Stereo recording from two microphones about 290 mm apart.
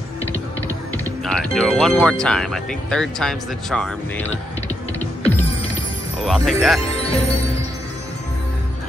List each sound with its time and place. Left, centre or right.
1.2 s speech: centre
5.2 s music: centre
6.2 s speech: centre
6.9 s speech: left